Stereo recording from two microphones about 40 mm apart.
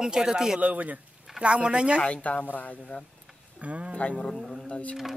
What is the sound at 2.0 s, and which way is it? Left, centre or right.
Speech, left.